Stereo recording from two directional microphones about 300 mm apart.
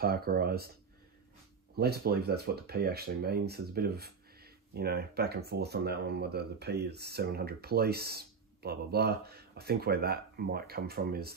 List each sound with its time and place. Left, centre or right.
0.0 s speech: right
1.8 s speech: right